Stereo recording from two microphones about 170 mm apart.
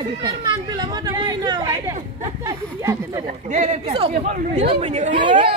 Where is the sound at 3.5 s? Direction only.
45° right (ahead or behind).